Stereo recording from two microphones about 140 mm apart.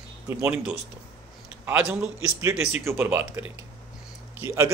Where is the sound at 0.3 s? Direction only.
15° right (ahead or behind).